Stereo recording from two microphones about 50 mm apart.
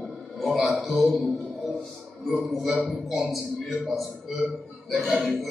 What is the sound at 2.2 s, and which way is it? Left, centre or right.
A man's voice, centre.